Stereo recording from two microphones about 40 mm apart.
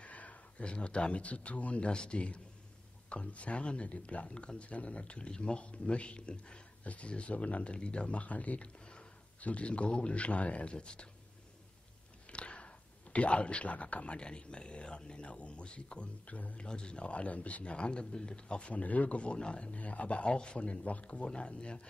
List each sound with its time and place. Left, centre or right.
0.0 s speech: left
12.3 s speech: left
16.6 s speech: left